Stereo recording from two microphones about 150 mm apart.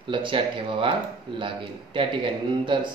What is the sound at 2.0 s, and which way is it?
Speech, 35° right (ahead or behind).